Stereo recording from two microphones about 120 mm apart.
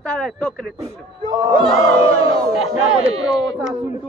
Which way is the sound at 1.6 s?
55° left (ahead or behind).